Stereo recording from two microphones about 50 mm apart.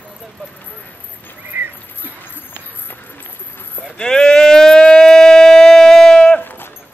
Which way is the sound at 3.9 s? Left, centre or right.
Centre.